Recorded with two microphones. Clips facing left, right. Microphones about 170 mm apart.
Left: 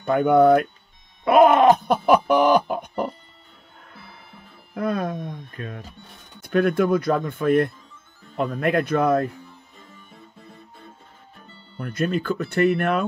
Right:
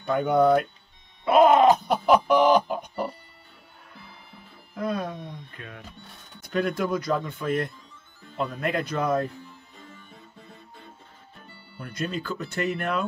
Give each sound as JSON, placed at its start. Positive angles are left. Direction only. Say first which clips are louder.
{"t": 0.0, "sound": "speech", "louder": "left 5 dB", "side_deg": 55}
{"t": 1.2, "sound": "chicken", "louder": "left 3 dB", "side_deg": 55}
{"t": 4.7, "sound": "music", "louder": "left 4 dB", "side_deg": 55}
{"t": 5.6, "sound": "speech", "louder": "left 8 dB", "side_deg": 40}
{"t": 6.4, "sound": "speech", "louder": "left 7 dB", "side_deg": 55}
{"t": 11.8, "sound": "speech", "louder": "left 7 dB", "side_deg": 55}